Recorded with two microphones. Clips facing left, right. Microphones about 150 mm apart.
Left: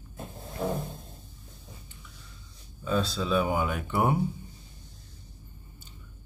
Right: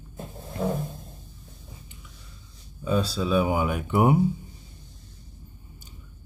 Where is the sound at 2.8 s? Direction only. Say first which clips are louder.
Right 3 dB; 10° right (ahead or behind).